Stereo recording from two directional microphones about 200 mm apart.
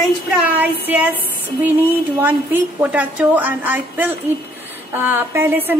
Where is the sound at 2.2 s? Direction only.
10° right (ahead or behind).